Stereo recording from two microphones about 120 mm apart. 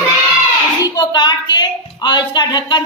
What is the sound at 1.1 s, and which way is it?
A woman's voice, 35° left (ahead or behind).